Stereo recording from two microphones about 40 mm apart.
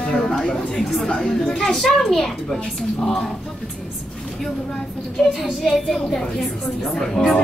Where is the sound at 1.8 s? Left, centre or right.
Centre.